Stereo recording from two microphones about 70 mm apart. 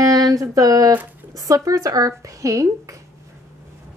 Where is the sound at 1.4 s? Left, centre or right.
Right.